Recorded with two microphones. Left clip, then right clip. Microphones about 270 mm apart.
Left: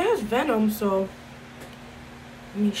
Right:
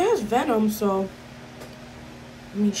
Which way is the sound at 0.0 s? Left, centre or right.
Centre.